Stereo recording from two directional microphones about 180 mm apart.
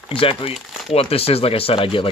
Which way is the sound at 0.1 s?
30° left (ahead or behind).